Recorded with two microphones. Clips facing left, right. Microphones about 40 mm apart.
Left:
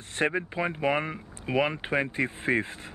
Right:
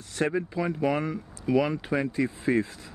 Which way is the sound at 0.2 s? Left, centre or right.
Left.